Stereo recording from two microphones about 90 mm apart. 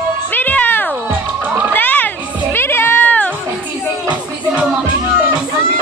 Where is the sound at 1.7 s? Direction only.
20° left (ahead or behind).